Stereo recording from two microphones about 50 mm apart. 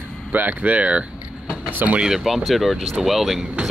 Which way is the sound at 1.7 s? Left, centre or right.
Right.